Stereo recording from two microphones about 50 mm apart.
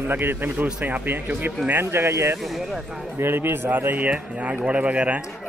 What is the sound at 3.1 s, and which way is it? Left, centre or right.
Speech, right.